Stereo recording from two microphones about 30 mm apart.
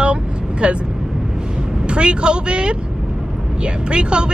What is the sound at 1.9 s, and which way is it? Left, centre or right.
Speech, right.